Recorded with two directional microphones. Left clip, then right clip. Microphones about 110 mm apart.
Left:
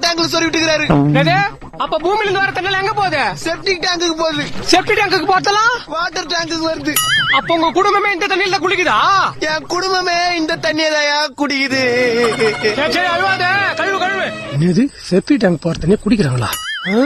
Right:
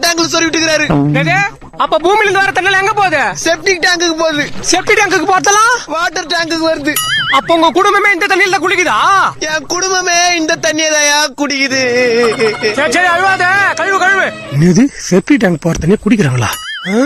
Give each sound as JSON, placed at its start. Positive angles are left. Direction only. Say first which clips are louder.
{"t": 0.0, "sound": "speech", "louder": "right 3 dB", "side_deg": -25}
{"t": 0.9, "sound": "fowl", "louder": "right 1 dB", "side_deg": 0}
{"t": 1.8, "sound": "speech", "louder": "right 6 dB", "side_deg": -90}
{"t": 3.8, "sound": "speech", "louder": "right 5 dB", "side_deg": -20}
{"t": 4.6, "sound": "speech", "louder": "right 2 dB", "side_deg": -80}
{"t": 5.9, "sound": "speech", "louder": "right 4 dB", "side_deg": -30}
{"t": 6.9, "sound": "speech", "louder": "right 1 dB", "side_deg": 0}
{"t": 7.5, "sound": "speech", "louder": "right 6 dB", "side_deg": -55}
{"t": 9.5, "sound": "speech", "louder": "right 3 dB", "side_deg": -30}
{"t": 12.0, "sound": "fowl", "louder": "right 5 dB", "side_deg": 0}
{"t": 12.7, "sound": "music", "louder": "right 5 dB", "side_deg": -90}
{"t": 13.4, "sound": "speech", "louder": "right 4 dB", "side_deg": -65}
{"t": 14.6, "sound": "speech", "louder": "right 6 dB", "side_deg": -45}